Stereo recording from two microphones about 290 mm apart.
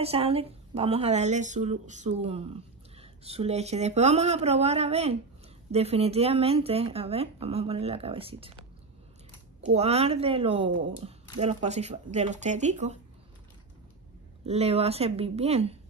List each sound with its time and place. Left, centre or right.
0.0 s a woman's voice: centre
9.8 s a woman's voice: right
14.4 s a woman's voice: right